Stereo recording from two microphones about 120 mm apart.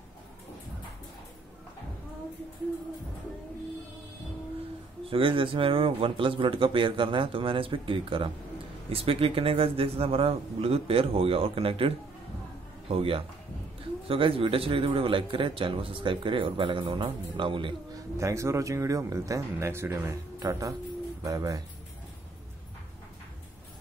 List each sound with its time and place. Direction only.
5.1 s a man's voice: 45° right (ahead or behind)
18.1 s speech: 25° right (ahead or behind)